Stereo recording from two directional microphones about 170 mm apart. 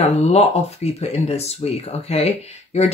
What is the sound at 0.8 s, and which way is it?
Speech, 40° left (ahead or behind).